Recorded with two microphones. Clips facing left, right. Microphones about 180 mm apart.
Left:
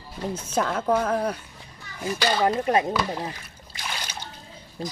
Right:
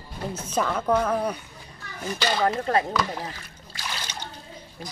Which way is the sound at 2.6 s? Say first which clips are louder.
Left 1 dB; 20° left (ahead or behind).